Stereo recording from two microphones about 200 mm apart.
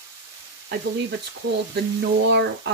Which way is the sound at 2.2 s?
60° right (ahead or behind).